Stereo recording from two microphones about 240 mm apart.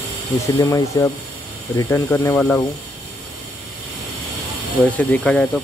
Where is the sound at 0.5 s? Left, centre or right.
Centre.